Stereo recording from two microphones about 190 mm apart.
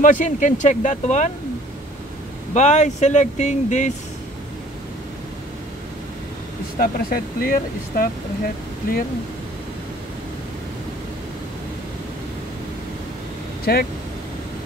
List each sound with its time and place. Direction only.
0.0 s speech: 40° left (ahead or behind)
2.5 s speech: 40° left (ahead or behind)
6.8 s speech: 50° left (ahead or behind)
13.7 s speech: 55° left (ahead or behind)